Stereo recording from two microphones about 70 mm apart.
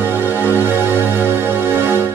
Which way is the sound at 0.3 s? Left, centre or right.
Left.